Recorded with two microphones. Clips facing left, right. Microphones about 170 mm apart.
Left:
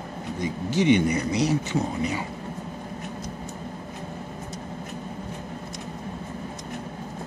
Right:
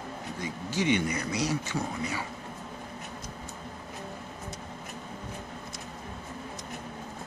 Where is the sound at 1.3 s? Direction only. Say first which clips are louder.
Left 6 dB; 20° left (ahead or behind).